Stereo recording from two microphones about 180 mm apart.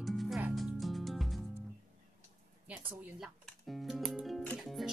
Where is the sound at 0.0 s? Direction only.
Centre (ahead or behind).